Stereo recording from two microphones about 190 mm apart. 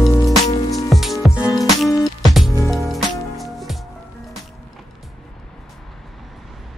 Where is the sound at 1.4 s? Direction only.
20° left (ahead or behind).